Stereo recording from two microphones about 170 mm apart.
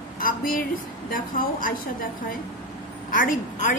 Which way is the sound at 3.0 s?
55° left (ahead or behind).